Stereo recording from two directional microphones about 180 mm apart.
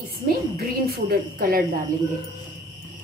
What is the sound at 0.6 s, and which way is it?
A woman's voice, 60° right (ahead or behind).